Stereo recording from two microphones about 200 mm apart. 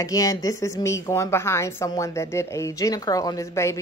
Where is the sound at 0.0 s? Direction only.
15° left (ahead or behind).